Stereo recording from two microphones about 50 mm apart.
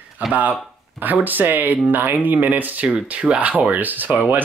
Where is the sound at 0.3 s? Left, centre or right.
Right.